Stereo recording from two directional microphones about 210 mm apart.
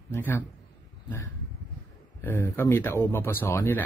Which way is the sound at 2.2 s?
10° left (ahead or behind).